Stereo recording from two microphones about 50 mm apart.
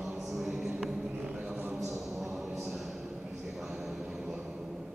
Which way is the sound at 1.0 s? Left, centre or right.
Right.